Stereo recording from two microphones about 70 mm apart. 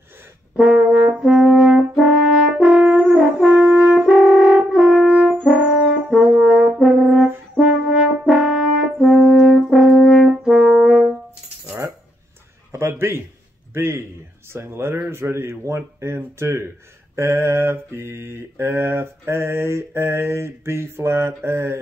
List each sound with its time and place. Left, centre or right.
0.6 s brass instrument: centre
5.4 s french horn: centre
12.7 s a sound: right
17.1 s mantra: right